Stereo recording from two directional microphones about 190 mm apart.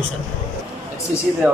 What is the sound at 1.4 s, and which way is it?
Speech, 10° right (ahead or behind).